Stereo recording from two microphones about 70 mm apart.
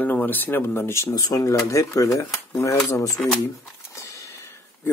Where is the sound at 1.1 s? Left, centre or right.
Left.